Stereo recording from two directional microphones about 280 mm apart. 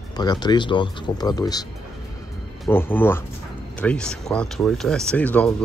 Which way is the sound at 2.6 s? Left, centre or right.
Centre.